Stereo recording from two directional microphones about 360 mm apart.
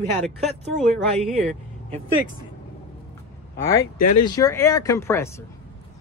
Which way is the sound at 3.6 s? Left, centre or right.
Centre.